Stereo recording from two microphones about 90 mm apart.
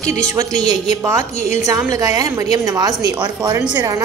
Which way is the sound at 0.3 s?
40° right (ahead or behind).